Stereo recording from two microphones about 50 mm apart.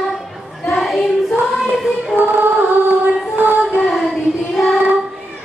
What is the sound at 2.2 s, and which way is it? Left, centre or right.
Music, right.